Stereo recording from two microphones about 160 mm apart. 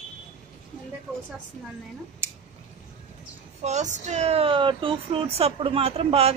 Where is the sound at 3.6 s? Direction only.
45° right (ahead or behind).